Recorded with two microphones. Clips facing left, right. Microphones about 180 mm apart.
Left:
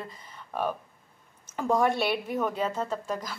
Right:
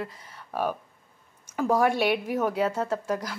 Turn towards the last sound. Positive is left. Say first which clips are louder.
# right 4 dB
turn(degrees=-10)  # may be behind; listen again after turning